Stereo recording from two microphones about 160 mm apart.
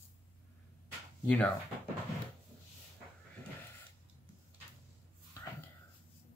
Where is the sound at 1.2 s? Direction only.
5° left (ahead or behind).